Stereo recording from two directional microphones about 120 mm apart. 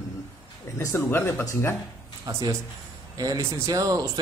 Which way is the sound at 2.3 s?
30° right (ahead or behind).